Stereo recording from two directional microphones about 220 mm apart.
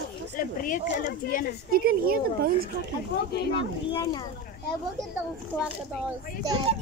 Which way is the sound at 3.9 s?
20° left (ahead or behind).